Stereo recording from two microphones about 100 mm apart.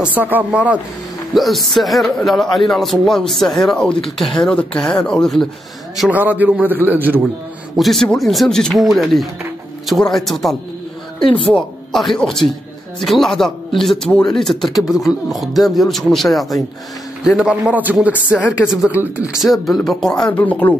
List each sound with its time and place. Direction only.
0.0 s a man's voice: 15° right (ahead or behind)
1.3 s speech: centre (ahead or behind)
6.0 s a man's voice: 15° right (ahead or behind)
7.7 s speech: centre (ahead or behind)
11.2 s speech: 65° left (ahead or behind)
11.5 s a man's voice: centre (ahead or behind); by 19.3 s 15° right (ahead or behind)
19.4 s speech: centre (ahead or behind)
20.2 s speech: 15° left (ahead or behind)